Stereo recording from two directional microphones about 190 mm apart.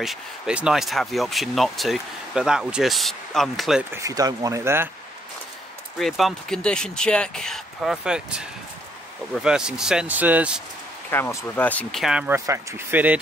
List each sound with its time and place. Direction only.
0.0 s speech: 5° right (ahead or behind)
3.9 s speech: 15° right (ahead or behind)
5.9 s speech: centre (ahead or behind)
11.1 s speech: 10° left (ahead or behind); by 12.4 s 5° right (ahead or behind)
12.4 s speech: 15° right (ahead or behind)